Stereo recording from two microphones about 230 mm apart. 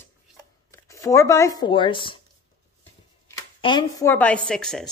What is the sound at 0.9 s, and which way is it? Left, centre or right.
Speech, centre.